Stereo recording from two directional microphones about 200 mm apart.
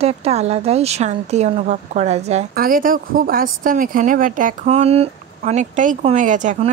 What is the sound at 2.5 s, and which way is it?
Speech, 45° right (ahead or behind).